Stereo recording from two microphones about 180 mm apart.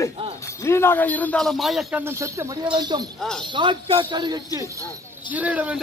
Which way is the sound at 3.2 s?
5° left (ahead or behind).